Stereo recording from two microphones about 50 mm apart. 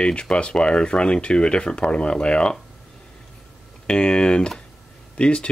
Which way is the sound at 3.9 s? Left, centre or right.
Centre.